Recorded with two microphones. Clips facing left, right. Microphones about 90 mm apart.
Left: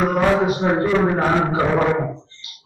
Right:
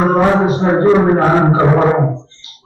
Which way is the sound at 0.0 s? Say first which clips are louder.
Right 5 dB; 30° right (ahead or behind).